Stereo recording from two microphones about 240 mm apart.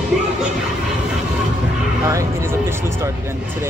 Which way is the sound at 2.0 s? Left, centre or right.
Centre.